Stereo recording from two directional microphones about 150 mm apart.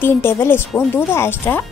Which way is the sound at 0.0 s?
15° left (ahead or behind).